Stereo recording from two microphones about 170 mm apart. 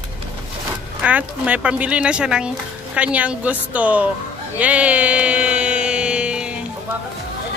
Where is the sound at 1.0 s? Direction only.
10° right (ahead or behind).